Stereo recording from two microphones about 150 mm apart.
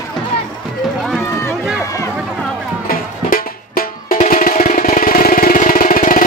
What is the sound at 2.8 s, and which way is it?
Music, 75° left (ahead or behind).